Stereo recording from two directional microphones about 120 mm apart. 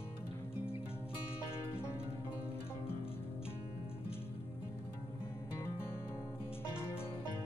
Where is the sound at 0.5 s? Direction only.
50° left (ahead or behind).